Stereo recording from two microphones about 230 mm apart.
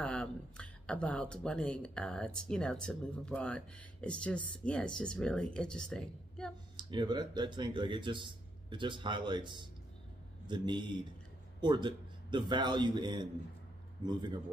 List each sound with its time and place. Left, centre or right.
0.0 s speech: centre
6.8 s speech: centre